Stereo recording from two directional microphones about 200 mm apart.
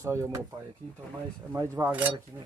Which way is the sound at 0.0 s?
15° right (ahead or behind).